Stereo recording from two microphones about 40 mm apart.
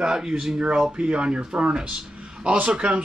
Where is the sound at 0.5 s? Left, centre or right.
Right.